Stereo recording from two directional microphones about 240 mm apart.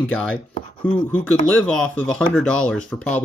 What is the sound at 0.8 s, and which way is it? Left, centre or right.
Speech, centre.